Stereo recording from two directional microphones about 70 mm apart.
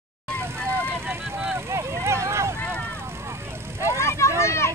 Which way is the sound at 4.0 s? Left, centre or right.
Left.